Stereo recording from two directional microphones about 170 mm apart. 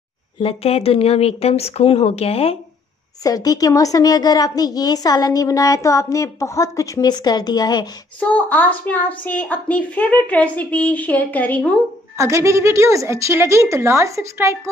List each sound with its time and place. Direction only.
0.4 s speech: 35° left (ahead or behind)
3.3 s a woman's voice: 20° left (ahead or behind)
8.2 s a woman's voice: 10° left (ahead or behind)
12.2 s a woman's voice: 15° right (ahead or behind)